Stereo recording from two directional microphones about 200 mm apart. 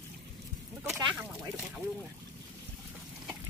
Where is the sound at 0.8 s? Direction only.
5° right (ahead or behind).